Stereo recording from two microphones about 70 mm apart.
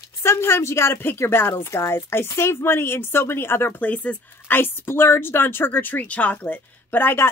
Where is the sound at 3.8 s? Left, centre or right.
Left.